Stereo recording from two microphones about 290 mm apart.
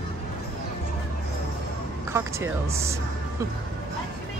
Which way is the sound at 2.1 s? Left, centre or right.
Centre.